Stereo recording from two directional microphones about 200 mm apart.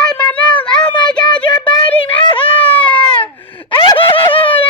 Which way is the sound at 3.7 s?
20° left (ahead or behind).